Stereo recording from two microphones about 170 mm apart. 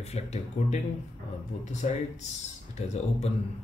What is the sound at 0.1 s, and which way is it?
Speech, 40° left (ahead or behind).